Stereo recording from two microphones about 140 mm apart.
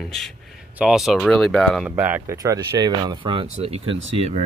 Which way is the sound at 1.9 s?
15° right (ahead or behind).